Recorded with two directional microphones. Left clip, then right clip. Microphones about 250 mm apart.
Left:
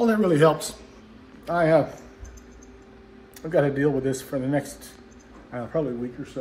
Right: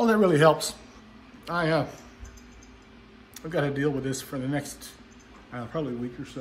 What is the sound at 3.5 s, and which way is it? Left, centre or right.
A man's voice, right.